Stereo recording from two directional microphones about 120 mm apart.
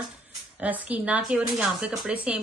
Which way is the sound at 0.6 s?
10° right (ahead or behind).